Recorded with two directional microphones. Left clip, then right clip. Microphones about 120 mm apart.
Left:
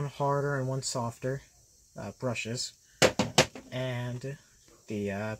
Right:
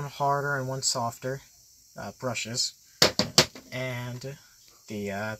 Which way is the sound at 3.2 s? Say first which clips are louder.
Right 3 dB; 30° right (ahead or behind).